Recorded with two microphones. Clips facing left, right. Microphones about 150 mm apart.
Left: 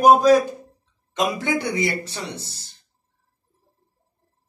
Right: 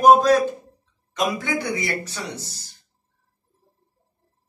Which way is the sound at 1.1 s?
25° left (ahead or behind).